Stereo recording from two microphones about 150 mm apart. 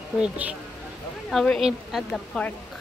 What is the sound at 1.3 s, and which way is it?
A woman's voice, 5° left (ahead or behind).